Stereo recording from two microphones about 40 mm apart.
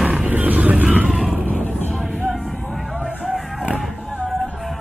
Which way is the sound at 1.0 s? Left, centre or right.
Centre.